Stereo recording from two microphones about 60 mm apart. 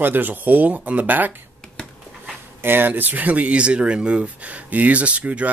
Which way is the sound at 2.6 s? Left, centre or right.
Right.